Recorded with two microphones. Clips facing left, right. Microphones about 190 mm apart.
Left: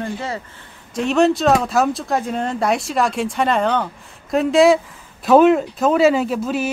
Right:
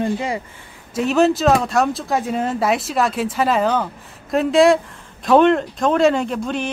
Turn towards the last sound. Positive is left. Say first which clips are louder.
# left 2 dB
turn(degrees=5)  # may be behind; listen again after turning